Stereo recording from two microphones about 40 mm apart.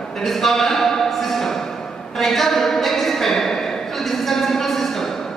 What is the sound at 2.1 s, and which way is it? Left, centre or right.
Speech, centre.